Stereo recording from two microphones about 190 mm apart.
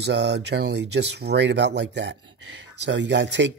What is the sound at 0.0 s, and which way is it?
Speech, 65° right (ahead or behind).